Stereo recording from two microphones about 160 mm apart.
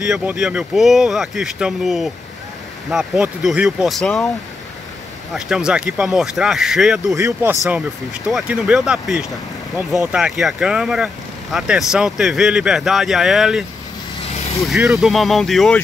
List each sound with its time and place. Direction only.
0.0 s speech: 5° right (ahead or behind)
5.3 s speech: 5° right (ahead or behind)
7.2 s speech: 15° right (ahead or behind)
8.3 s speech: 5° right (ahead or behind)
14.7 s speech: centre (ahead or behind)